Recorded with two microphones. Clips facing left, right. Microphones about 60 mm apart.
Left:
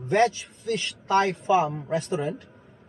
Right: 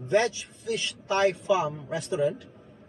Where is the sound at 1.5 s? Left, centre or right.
Left.